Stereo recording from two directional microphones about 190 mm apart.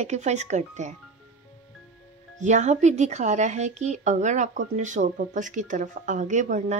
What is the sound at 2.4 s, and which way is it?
Speech, 40° right (ahead or behind).